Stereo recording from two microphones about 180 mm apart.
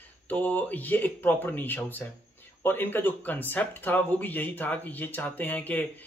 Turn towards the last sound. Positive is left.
turn(degrees=10)  # may be behind; listen again after turning